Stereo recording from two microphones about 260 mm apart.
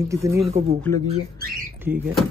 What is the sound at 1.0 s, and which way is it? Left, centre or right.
Speech, right.